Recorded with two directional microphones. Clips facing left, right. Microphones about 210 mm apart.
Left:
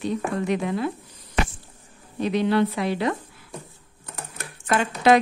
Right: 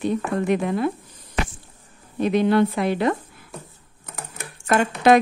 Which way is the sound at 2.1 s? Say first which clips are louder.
Right 3 dB; 50° right (ahead or behind).